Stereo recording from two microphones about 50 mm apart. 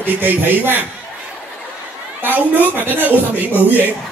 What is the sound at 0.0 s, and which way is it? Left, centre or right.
Speech, right.